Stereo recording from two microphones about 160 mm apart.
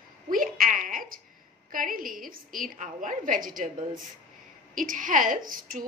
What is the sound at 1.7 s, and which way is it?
A woman's voice, 60° right (ahead or behind).